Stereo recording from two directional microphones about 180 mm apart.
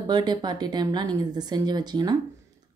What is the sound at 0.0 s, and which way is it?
Speech, 25° right (ahead or behind).